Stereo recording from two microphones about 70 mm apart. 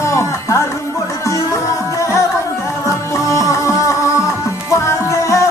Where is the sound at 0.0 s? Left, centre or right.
Left.